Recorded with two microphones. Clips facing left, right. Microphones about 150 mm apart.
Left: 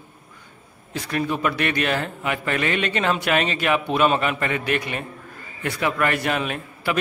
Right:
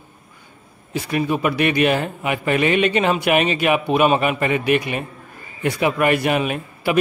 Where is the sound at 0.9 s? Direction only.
10° right (ahead or behind).